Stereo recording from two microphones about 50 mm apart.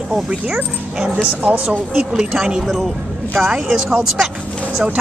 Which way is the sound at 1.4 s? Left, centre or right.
Right.